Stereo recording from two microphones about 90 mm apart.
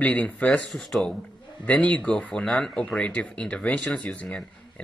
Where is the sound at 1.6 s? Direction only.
15° left (ahead or behind).